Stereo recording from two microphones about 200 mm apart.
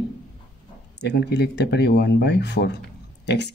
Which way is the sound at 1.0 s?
60° left (ahead or behind).